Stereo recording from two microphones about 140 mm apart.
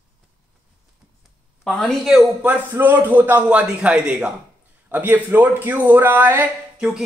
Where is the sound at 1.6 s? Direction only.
5° left (ahead or behind); by 6.8 s 15° right (ahead or behind).